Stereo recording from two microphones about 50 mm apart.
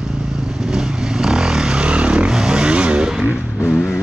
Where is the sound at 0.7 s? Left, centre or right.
Centre.